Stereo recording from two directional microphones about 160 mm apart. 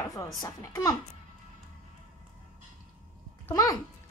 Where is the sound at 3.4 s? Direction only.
20° left (ahead or behind).